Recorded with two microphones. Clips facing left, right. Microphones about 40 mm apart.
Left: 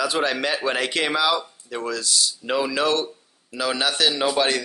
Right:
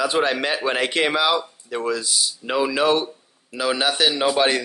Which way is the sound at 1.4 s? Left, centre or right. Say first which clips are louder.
Right 3 dB; centre.